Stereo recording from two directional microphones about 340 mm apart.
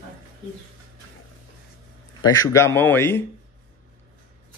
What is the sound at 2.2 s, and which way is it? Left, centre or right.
A man's voice, centre.